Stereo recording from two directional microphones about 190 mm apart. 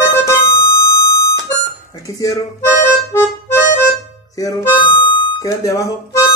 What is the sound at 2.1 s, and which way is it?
Speech, 20° left (ahead or behind).